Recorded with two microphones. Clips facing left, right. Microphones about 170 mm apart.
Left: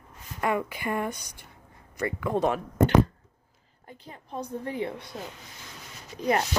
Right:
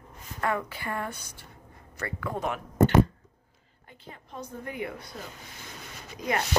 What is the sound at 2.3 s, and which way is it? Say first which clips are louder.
Speech: left 7 dB; 30° left (ahead or behind).